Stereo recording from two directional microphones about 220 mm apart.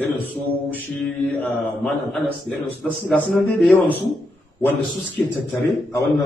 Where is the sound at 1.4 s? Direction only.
5° left (ahead or behind).